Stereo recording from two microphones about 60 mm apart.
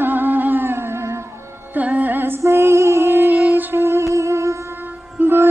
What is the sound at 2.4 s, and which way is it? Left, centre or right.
Female singing, right.